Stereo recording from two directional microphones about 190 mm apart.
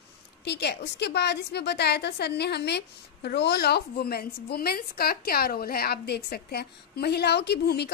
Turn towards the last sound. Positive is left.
turn(degrees=60)  # may be behind; listen again after turning